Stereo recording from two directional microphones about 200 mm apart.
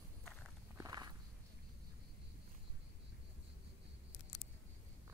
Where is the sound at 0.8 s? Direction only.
20° right (ahead or behind).